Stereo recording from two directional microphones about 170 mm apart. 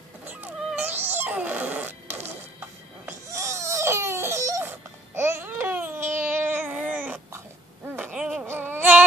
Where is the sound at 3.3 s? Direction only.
20° right (ahead or behind).